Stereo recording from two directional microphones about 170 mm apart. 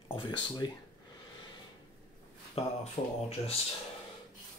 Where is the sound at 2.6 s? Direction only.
35° left (ahead or behind).